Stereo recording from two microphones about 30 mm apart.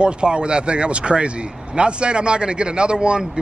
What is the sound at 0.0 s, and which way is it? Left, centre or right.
Speech, right.